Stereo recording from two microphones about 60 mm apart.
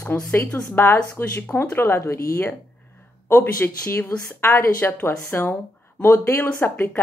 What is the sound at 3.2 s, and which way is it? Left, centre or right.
Speech, left.